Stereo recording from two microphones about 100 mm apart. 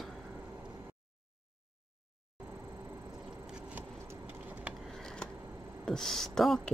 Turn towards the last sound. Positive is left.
turn(degrees=5)  # may be behind; listen again after turning